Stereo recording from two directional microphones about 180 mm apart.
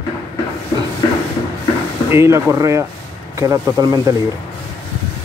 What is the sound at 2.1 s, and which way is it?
Speech, 15° right (ahead or behind).